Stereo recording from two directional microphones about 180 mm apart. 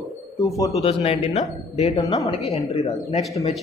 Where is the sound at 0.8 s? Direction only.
35° left (ahead or behind).